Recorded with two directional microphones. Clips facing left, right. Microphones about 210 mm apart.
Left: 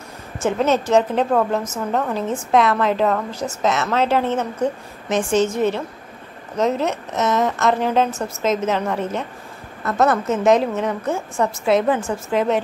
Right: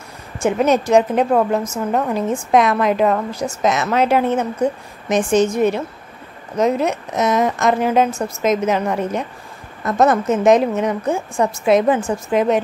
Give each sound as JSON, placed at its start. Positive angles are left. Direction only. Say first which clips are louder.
{"t": 0.4, "sound": "a woman's voice", "louder": "right 3 dB", "side_deg": -15}